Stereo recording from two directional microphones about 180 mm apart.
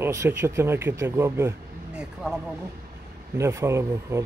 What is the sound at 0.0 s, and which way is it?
Speech, 15° right (ahead or behind).